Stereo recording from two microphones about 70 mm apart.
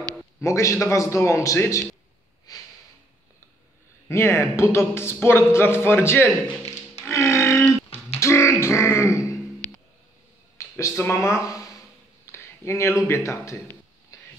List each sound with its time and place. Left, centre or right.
0.4 s a man's voice: left
4.1 s speech: left
7.0 s music: left
8.2 s grunt: left
10.8 s speech: left
12.3 s a sound: left
13.1 s a man's voice: left
14.1 s a sound: left